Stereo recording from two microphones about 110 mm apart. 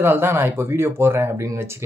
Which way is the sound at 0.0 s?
20° right (ahead or behind).